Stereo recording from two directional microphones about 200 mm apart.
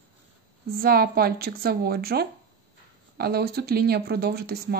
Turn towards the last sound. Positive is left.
turn(degrees=-50)  # may be behind; listen again after turning